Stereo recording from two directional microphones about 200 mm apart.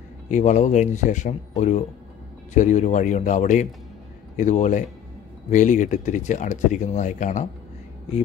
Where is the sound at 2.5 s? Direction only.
40° left (ahead or behind).